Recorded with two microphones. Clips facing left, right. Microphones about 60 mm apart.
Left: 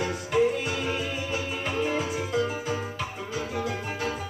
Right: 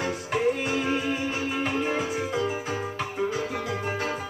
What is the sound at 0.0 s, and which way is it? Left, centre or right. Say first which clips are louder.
Music: left 1 dB; right.